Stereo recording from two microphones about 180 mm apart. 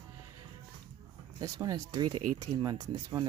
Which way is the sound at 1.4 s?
20° right (ahead or behind).